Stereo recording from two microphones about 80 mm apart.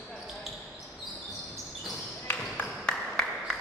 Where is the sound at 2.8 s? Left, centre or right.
Centre.